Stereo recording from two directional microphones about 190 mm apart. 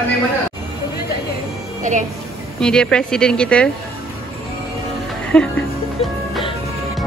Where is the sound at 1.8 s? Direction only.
40° right (ahead or behind).